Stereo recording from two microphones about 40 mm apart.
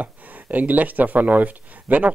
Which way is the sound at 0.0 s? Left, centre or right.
Right.